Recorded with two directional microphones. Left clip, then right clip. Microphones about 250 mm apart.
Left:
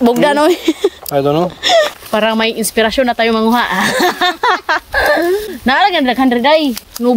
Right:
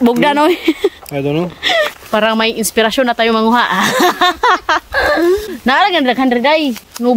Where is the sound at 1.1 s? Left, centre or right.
Centre.